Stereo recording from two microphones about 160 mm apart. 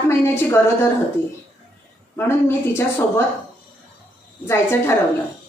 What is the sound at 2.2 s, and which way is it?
A woman's voice, 15° left (ahead or behind).